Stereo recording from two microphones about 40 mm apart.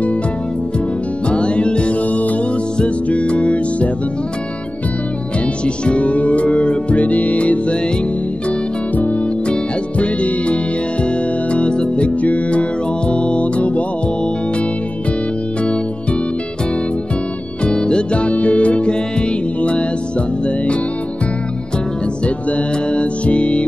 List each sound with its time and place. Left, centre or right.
1.3 s music: left
2.0 s music: left
5.9 s music: left
15.6 s music: left
17.6 s music: left
22.2 s music: left